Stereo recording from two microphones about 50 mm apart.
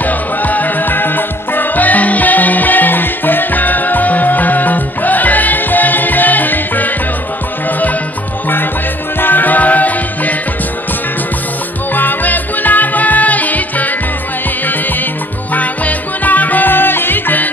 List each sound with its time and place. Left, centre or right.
0.0 s music: left
9.2 s music: left
11.9 s music: left
15.5 s music: left